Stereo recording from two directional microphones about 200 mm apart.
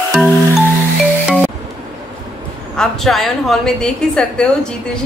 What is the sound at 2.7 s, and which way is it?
A woman's voice, centre (ahead or behind).